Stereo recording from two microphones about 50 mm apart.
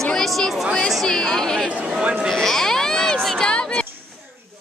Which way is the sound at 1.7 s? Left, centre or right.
Right.